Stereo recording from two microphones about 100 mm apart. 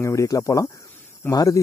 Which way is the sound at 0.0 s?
35° left (ahead or behind).